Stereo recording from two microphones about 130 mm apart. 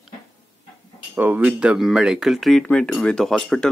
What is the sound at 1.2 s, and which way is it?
Speech, 10° right (ahead or behind).